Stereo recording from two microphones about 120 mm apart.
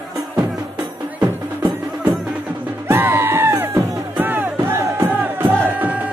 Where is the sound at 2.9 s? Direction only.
20° right (ahead or behind).